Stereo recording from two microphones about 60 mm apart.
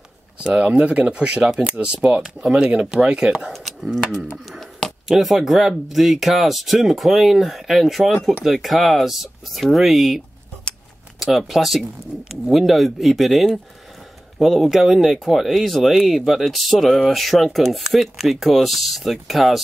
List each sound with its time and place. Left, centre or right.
0.4 s speech: centre
3.5 s speech: centre
4.5 s a sound: centre
5.1 s speech: centre